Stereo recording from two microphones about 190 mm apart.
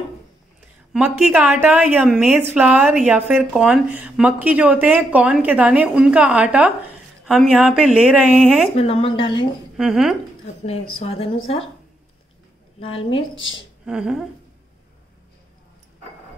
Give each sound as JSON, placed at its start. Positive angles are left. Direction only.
{"t": 0.9, "sound": "a woman's voice", "side_deg": -5}
{"t": 8.7, "sound": "speech", "side_deg": 30}
{"t": 9.8, "sound": "speech", "side_deg": 0}
{"t": 10.6, "sound": "speech", "side_deg": 35}
{"t": 12.8, "sound": "speech", "side_deg": 30}
{"t": 13.8, "sound": "speech", "side_deg": -5}